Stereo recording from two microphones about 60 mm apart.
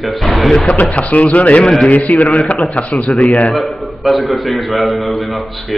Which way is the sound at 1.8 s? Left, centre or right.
Left.